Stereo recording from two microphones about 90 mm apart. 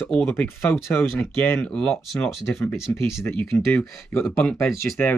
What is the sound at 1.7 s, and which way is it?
Speech, 10° left (ahead or behind).